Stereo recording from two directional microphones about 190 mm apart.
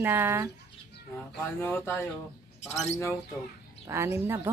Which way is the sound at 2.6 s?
35° left (ahead or behind).